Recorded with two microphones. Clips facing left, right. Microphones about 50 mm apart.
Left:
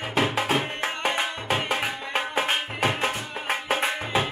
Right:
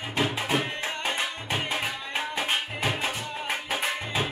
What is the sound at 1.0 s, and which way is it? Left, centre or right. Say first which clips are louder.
Music: left 5 dB; left.